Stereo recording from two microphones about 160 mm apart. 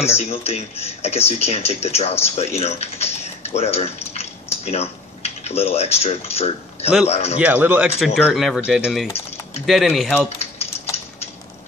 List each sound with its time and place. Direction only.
0.0 s speech: 40° left (ahead or behind)
7.3 s speech: 10° right (ahead or behind)